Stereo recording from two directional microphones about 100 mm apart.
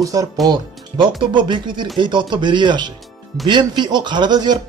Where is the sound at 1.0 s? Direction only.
55° right (ahead or behind).